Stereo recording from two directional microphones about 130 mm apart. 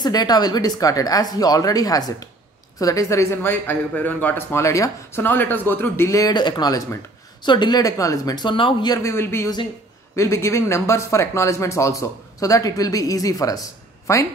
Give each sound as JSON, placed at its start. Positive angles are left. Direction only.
{"t": 0.0, "sound": "a man's voice", "side_deg": 30}
{"t": 8.9, "sound": "a man's voice", "side_deg": 20}